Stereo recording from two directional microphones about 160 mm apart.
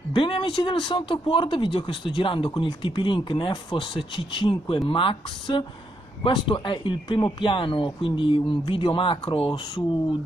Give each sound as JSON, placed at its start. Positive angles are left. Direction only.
{"t": 0.1, "sound": "speech", "side_deg": 30}